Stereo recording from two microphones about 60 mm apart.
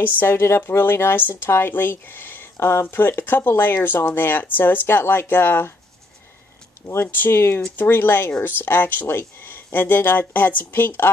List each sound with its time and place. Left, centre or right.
0.0 s speech: left
6.9 s speech: left